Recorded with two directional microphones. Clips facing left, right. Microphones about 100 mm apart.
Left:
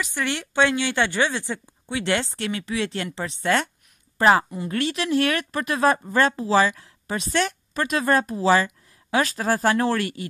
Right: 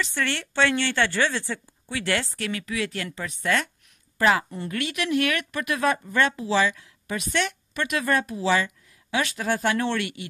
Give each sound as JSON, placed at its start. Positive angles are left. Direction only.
{"t": 0.0, "sound": "a woman's voice", "side_deg": 15}